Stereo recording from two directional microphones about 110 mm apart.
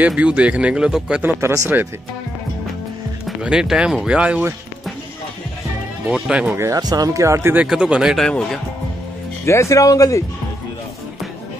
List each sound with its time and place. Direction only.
0.0 s speech: 10° right (ahead or behind)
1.2 s speech: 25° right (ahead or behind)
3.3 s speech: 5° right (ahead or behind)
6.0 s speech: 5° right (ahead or behind)
6.5 s speech: 25° right (ahead or behind)
6.8 s speech: 35° right (ahead or behind)
7.6 s speech: 5° right (ahead or behind)
8.2 s speech: 5° left (ahead or behind)
9.5 s speech: 25° left (ahead or behind)